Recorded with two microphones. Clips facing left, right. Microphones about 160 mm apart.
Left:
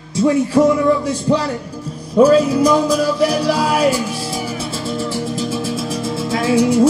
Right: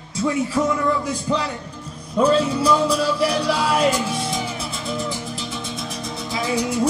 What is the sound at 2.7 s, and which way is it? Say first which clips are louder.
Music: left 5 dB; 40° left (ahead or behind).